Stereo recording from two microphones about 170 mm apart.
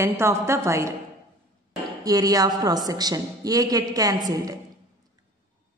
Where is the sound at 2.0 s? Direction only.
20° right (ahead or behind).